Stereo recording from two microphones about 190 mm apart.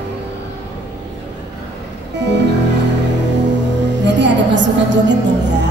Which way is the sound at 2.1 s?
65° right (ahead or behind).